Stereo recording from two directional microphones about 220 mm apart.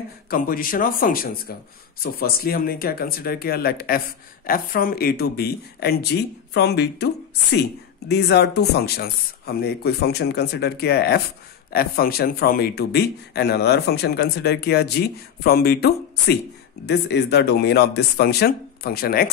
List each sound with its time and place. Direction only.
0.3 s speech: 40° left (ahead or behind)
8.1 s speech: 50° left (ahead or behind)